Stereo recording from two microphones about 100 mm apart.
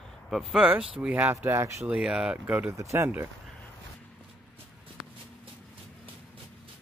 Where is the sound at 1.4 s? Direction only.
25° right (ahead or behind).